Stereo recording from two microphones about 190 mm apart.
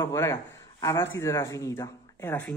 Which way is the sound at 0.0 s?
15° left (ahead or behind).